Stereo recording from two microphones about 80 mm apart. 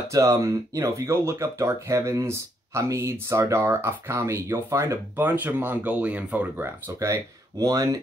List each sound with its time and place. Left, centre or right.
0.1 s speech: right
5.1 s speech: right
7.0 s speech: right